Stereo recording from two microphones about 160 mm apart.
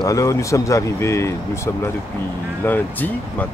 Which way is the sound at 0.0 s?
20° left (ahead or behind).